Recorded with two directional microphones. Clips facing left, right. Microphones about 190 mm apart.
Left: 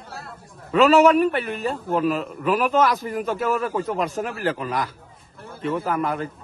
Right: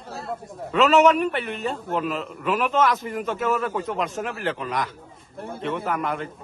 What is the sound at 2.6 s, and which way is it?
Speech, 35° left (ahead or behind).